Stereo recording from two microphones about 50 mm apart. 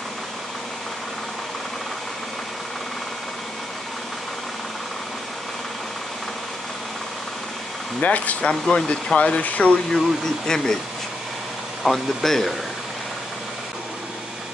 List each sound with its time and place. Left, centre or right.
8.0 s speech: left
8.5 s speech: centre
9.9 s speech: centre
11.8 s speech: centre